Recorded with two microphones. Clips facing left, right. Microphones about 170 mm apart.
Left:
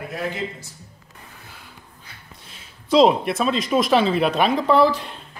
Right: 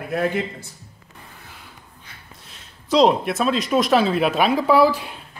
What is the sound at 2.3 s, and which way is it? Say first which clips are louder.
Speech: even; centre (ahead or behind).